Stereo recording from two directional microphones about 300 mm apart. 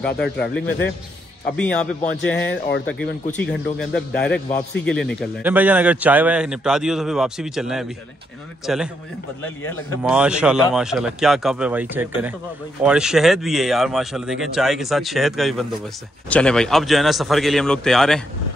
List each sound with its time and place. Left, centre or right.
0.6 s a man's voice: centre
10.1 s speech: centre